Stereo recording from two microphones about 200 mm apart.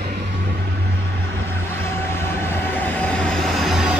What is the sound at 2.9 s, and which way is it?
Train, 5° left (ahead or behind).